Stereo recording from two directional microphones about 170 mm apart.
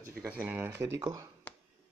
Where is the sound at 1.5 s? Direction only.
10° left (ahead or behind).